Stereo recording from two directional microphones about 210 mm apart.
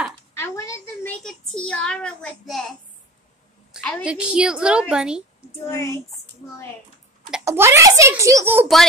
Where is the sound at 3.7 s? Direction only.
Centre (ahead or behind).